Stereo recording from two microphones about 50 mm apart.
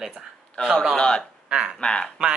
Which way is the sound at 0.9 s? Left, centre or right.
Centre.